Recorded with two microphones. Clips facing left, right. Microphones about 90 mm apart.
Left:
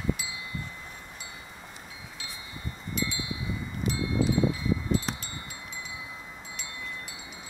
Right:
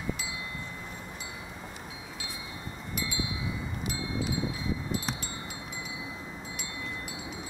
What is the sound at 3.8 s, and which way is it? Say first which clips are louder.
Wind chime: left 8 dB; 35° left (ahead or behind).